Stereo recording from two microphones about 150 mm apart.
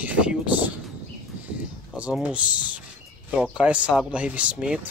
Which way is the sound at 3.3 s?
10° right (ahead or behind).